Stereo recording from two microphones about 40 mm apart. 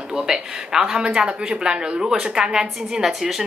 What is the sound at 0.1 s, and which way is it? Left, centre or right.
Speech, centre.